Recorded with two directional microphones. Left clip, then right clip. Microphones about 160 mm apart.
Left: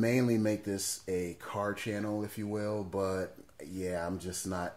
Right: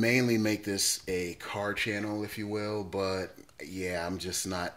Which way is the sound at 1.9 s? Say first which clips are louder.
Right 2 dB; 15° right (ahead or behind).